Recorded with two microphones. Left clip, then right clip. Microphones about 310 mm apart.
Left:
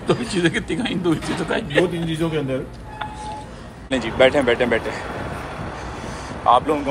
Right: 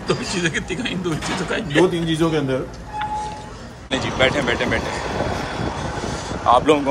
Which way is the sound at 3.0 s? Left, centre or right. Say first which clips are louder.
Right 5 dB; centre.